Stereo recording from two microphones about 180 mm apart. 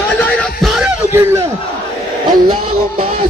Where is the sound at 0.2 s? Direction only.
Centre (ahead or behind).